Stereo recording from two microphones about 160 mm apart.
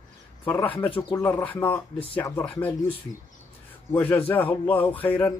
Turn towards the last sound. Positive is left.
turn(degrees=10)  # may be behind; listen again after turning